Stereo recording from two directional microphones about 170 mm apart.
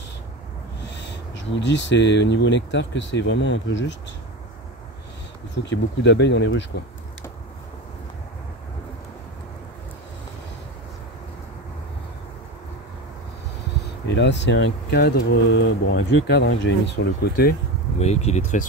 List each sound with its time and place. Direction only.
0.9 s speech: 90° left
5.5 s speech: 90° left
14.0 s speech: 90° left
17.0 s speech: 65° left (ahead or behind)
17.9 s speech: 40° left (ahead or behind)